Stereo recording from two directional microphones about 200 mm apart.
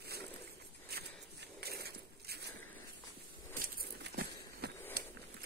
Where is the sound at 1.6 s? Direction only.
50° right (ahead or behind).